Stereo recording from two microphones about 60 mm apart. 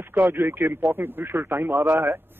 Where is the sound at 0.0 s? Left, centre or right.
Right.